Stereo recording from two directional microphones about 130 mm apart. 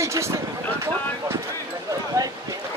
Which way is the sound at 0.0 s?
25° right (ahead or behind).